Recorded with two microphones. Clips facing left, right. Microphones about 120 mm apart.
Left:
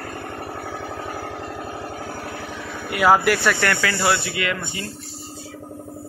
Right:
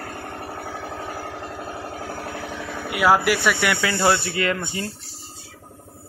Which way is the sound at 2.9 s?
5° right (ahead or behind).